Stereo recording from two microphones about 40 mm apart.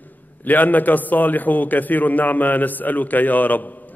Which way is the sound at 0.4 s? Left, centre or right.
Left.